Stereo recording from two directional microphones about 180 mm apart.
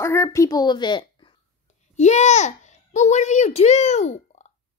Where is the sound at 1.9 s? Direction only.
40° left (ahead or behind).